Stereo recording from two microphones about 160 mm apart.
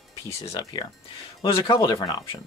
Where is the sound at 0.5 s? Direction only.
30° left (ahead or behind).